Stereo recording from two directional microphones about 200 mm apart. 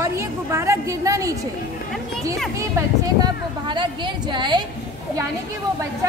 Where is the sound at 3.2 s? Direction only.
25° right (ahead or behind).